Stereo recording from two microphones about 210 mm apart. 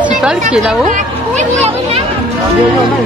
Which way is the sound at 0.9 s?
35° right (ahead or behind).